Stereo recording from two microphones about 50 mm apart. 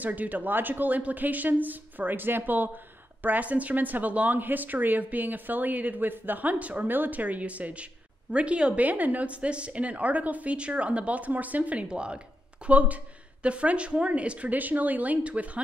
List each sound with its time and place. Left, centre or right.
0.0 s speech: right
8.8 s a woman's voice: right